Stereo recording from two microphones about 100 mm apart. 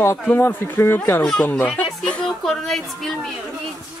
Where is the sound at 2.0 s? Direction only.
5° left (ahead or behind).